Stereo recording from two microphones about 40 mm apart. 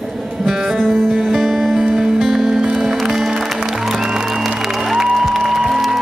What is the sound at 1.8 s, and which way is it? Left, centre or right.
Music, centre.